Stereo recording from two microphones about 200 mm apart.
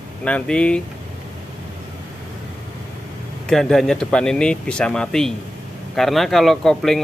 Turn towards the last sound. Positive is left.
turn(degrees=0)  # may be behind; listen again after turning